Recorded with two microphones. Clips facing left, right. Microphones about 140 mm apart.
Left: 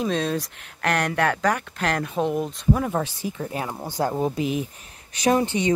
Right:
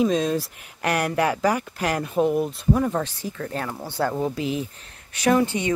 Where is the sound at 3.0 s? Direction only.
15° left (ahead or behind).